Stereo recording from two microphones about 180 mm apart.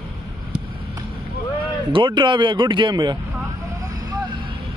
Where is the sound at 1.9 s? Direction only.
25° right (ahead or behind).